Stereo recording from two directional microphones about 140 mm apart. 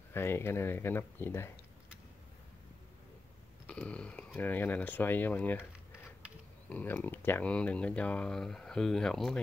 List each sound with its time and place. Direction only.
0.1 s speech: 15° left (ahead or behind)
3.6 s speech: 10° left (ahead or behind)
6.7 s speech: 10° left (ahead or behind)